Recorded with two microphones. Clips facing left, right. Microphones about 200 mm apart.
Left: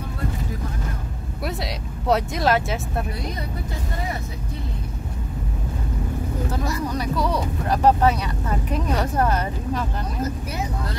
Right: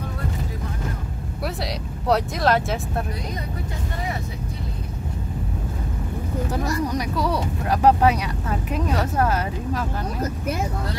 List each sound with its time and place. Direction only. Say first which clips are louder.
2.0 s speech: even; centre (ahead or behind)
7.6 s speech: right 1 dB; 10° right (ahead or behind)